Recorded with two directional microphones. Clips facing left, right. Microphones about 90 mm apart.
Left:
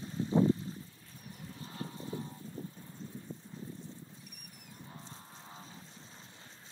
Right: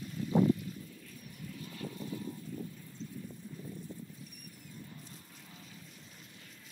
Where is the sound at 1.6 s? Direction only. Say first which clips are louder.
Right 1 dB; 30° left (ahead or behind).